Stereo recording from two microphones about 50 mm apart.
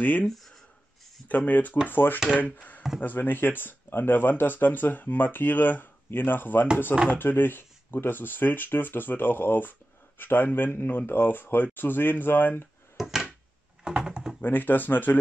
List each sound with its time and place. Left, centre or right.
0.0 s speech: left
1.3 s speech: left
13.0 s drawer open or close: centre
13.8 s typing: centre
14.4 s speech: left